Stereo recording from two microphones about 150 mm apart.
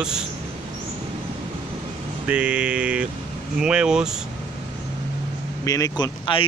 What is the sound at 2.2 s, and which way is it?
Speech, 10° right (ahead or behind).